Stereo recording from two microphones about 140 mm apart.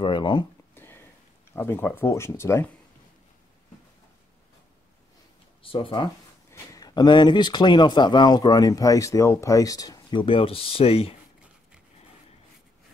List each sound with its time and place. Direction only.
0.0 s speech: 35° left (ahead or behind)
0.7 s a sound: 15° left (ahead or behind)
1.5 s speech: 15° left (ahead or behind)
5.6 s speech: 40° left (ahead or behind)
6.5 s speech: 25° left (ahead or behind)
10.2 s speech: 40° left (ahead or behind)